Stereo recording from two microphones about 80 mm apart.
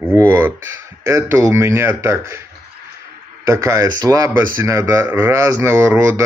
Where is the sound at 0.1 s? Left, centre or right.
Right.